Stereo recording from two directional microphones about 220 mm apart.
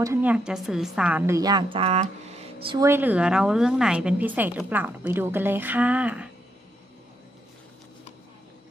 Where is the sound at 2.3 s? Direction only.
25° right (ahead or behind).